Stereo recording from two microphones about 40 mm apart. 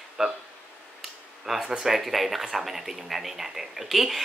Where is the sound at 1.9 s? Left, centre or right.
Centre.